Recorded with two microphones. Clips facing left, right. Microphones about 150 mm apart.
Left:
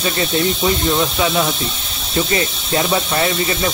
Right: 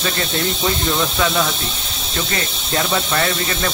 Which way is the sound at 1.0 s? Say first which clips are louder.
Left 2 dB; 35° left (ahead or behind).